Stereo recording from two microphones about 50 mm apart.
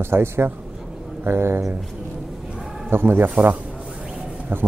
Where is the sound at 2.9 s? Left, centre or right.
Right.